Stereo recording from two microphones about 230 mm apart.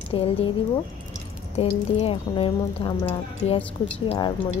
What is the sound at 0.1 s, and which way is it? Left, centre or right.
Speech, left.